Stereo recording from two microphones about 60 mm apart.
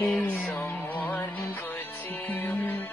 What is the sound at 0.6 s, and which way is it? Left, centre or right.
Music, left.